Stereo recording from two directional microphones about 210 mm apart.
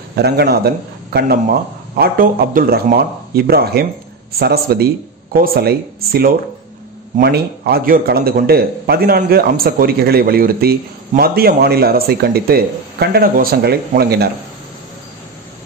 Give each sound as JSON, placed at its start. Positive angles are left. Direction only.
{"t": 0.1, "sound": "a man's voice", "side_deg": -50}